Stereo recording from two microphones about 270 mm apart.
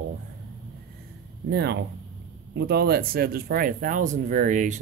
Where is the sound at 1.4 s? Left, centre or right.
Right.